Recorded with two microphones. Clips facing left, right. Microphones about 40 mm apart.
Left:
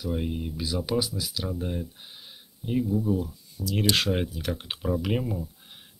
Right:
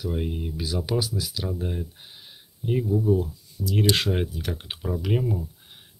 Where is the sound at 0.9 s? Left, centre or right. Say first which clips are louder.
Even; right.